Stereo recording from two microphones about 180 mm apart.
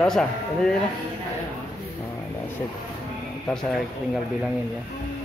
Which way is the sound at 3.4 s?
5° left (ahead or behind).